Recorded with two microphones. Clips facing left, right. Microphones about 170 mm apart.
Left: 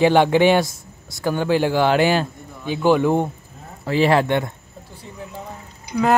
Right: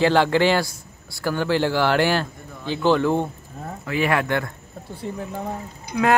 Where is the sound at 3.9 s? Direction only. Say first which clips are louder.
Left 5 dB; 30° left (ahead or behind).